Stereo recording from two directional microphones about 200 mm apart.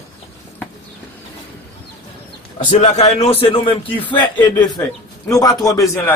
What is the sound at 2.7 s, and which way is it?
A man's voice, 30° left (ahead or behind).